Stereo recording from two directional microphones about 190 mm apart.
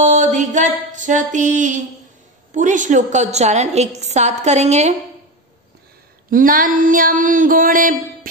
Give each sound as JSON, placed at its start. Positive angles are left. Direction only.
{"t": 0.0, "sound": "a sound", "side_deg": -40}
{"t": 2.5, "sound": "a woman's voice", "side_deg": -40}
{"t": 6.3, "sound": "female singing", "side_deg": -45}